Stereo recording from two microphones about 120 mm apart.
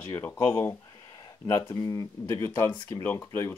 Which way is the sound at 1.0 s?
30° left (ahead or behind).